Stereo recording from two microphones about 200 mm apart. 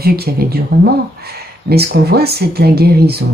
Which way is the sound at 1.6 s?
55° right (ahead or behind).